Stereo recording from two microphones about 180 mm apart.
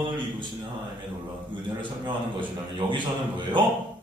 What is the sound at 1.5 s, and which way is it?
Speech, 25° right (ahead or behind).